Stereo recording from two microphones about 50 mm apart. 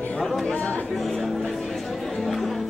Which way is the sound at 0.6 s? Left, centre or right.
Left.